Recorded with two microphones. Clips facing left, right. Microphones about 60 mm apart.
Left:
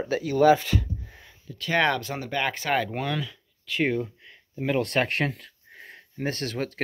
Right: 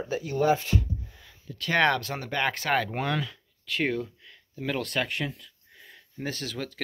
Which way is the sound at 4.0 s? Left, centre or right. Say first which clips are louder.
Left 3 dB; left.